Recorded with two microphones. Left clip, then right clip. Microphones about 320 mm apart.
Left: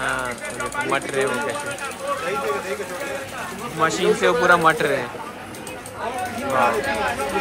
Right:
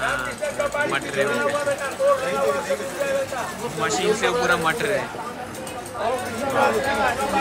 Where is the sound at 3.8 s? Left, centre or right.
Centre.